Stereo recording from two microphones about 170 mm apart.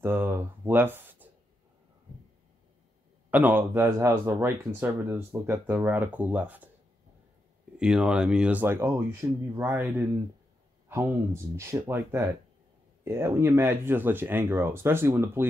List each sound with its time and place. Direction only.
0.0 s speech: 15° right (ahead or behind)
3.3 s speech: 10° right (ahead or behind)
7.7 s speech: 5° right (ahead or behind)
11.5 s speech: 15° right (ahead or behind)